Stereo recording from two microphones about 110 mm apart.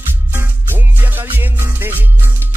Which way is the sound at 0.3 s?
20° right (ahead or behind).